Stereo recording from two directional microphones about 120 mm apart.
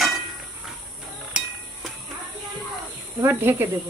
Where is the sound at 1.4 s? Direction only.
5° right (ahead or behind).